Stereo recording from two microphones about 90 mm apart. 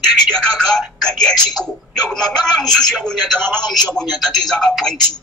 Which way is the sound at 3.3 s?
25° right (ahead or behind).